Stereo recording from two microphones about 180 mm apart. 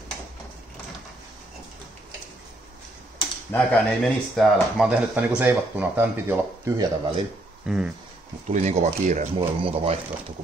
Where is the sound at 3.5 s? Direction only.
10° left (ahead or behind).